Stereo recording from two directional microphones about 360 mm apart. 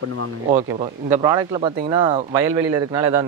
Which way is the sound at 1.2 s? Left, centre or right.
Centre.